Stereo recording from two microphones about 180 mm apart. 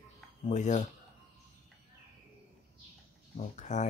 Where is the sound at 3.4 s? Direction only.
40° left (ahead or behind).